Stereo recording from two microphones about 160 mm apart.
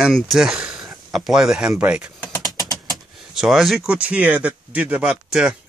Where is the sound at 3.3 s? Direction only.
Centre (ahead or behind).